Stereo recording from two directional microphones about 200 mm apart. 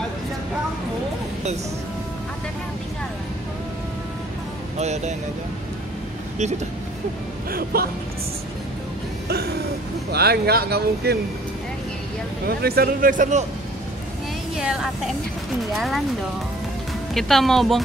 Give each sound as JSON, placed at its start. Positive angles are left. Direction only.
{"t": 4.7, "sound": "speech", "side_deg": -35}
{"t": 7.5, "sound": "speech", "side_deg": -50}
{"t": 9.3, "sound": "speech", "side_deg": -55}
{"t": 12.4, "sound": "speech", "side_deg": -50}
{"t": 14.6, "sound": "speech", "side_deg": -5}
{"t": 17.1, "sound": "speech", "side_deg": 0}